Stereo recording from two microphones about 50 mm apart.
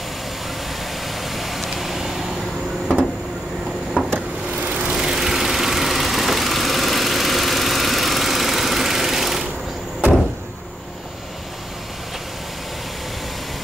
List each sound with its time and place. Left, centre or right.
1.0 s vehicle: centre
4.1 s a sound: right
4.7 s vehicle: centre